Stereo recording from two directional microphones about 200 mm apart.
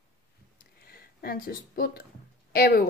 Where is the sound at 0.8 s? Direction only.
50° left (ahead or behind).